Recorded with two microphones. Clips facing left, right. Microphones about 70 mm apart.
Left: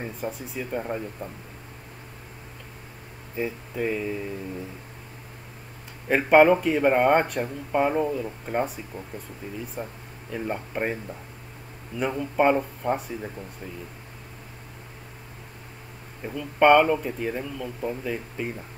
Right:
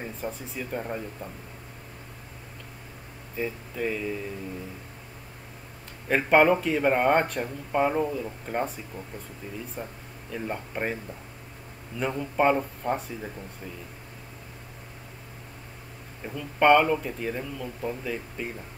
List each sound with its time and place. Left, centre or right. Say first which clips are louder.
0.0 s speech: left 2 dB; centre
3.3 s speech: left 2 dB; centre
6.0 s speech: left 3 dB; centre
9.8 s speech: left 3 dB; left
10.3 s speech: left 3 dB; centre
12.0 s speech: left 2 dB; centre
16.3 s speech: left 2 dB; centre